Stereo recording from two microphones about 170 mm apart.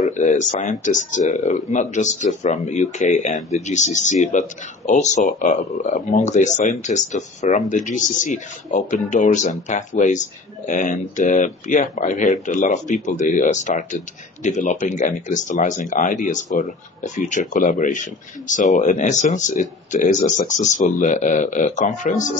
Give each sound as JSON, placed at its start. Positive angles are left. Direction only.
{"t": 0.1, "sound": "speech", "side_deg": 45}